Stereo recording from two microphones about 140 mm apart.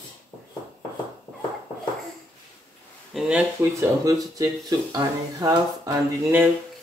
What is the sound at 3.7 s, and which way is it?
Speech, 20° right (ahead or behind).